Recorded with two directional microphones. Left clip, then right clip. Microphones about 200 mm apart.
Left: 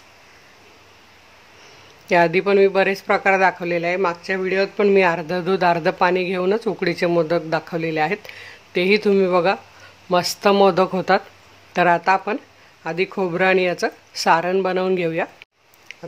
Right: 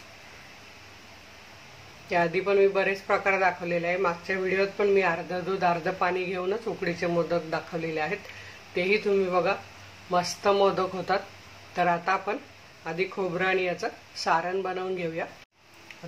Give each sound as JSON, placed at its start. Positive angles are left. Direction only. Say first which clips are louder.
{"t": 2.0, "sound": "speech", "louder": "left 9 dB", "side_deg": 50}